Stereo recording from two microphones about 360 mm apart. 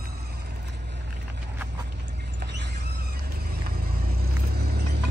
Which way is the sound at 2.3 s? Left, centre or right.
Right.